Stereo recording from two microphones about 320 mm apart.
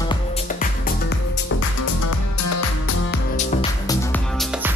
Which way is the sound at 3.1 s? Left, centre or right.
Left.